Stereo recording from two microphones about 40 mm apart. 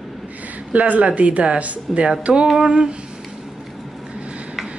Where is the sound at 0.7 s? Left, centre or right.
Right.